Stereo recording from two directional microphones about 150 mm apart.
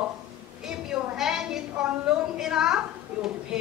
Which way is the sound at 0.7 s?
5° right (ahead or behind).